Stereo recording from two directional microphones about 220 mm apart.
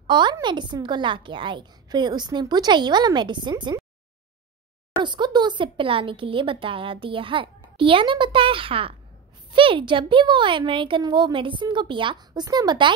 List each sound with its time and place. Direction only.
0.0 s speech: 20° right (ahead or behind)
4.9 s speech: 20° right (ahead or behind)